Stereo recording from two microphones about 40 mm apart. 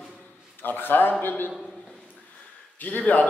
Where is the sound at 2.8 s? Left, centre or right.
Left.